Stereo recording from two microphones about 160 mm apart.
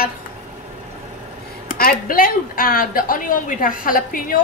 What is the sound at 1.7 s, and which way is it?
Speech, 65° left (ahead or behind).